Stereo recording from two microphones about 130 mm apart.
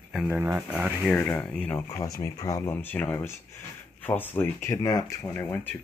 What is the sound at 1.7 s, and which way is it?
Speech, 20° left (ahead or behind).